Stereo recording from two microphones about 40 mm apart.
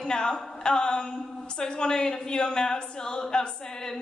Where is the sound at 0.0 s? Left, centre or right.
Centre.